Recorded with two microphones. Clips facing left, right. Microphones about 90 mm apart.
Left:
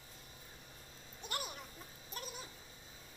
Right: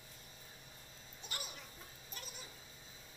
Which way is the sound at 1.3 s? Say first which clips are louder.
Left 6 dB; 50° left (ahead or behind).